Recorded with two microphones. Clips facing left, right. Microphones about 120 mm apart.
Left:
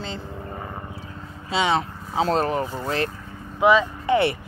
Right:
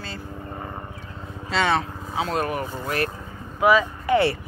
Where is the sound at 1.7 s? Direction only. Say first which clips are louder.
Left 2 dB; 30° left (ahead or behind).